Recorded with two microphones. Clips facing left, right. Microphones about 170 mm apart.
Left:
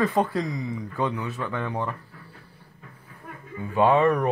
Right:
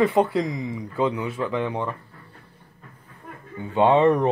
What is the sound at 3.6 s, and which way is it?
Speech, 25° right (ahead or behind).